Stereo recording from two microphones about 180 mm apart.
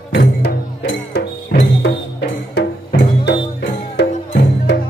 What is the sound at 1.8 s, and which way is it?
Music, 65° left (ahead or behind).